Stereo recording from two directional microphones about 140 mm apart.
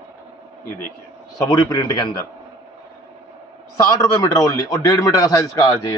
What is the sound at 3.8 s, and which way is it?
A man's voice, 20° left (ahead or behind).